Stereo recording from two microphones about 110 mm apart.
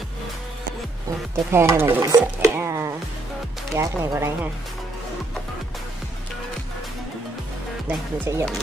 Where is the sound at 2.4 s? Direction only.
25° right (ahead or behind).